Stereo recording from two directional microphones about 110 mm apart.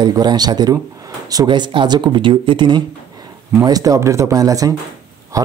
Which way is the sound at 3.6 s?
35° right (ahead or behind).